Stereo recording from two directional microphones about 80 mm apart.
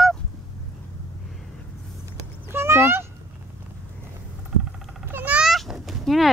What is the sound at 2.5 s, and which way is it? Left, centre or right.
Fowl, right.